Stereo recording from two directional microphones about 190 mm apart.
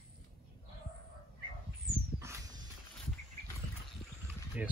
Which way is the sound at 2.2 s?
15° right (ahead or behind).